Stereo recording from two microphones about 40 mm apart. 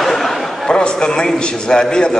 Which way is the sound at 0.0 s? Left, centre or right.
Centre.